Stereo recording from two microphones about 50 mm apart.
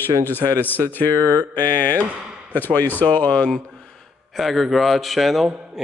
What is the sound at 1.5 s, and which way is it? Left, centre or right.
Speech, left.